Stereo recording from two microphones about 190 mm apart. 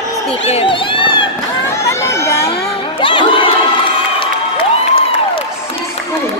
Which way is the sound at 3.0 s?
25° left (ahead or behind).